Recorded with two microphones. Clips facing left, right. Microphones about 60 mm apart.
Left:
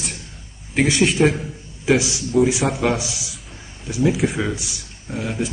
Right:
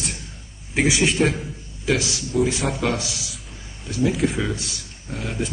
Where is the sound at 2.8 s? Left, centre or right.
Centre.